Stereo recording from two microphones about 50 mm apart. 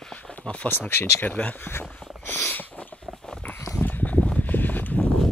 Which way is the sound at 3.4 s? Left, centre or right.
Left.